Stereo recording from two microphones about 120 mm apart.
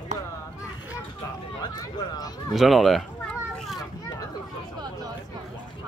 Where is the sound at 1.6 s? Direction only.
35° left (ahead or behind).